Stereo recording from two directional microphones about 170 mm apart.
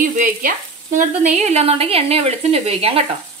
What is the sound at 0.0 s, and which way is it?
Frying, 55° right (ahead or behind).